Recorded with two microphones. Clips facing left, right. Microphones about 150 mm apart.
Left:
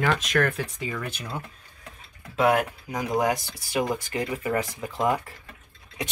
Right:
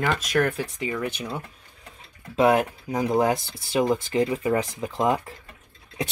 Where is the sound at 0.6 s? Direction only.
15° right (ahead or behind).